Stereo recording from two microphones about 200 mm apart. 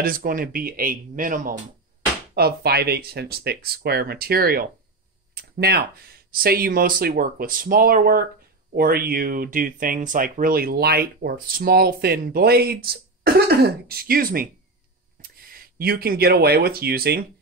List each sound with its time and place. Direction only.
0.0 s speech: 45° right (ahead or behind)